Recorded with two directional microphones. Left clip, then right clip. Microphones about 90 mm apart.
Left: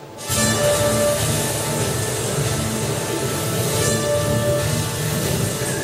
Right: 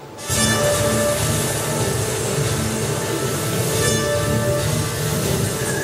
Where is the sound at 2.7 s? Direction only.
15° left (ahead or behind).